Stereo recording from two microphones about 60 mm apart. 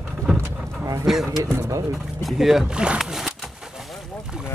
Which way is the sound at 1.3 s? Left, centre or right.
Right.